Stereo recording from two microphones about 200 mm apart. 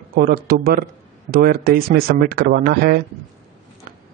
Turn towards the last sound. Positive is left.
turn(degrees=-50)  # may be behind; listen again after turning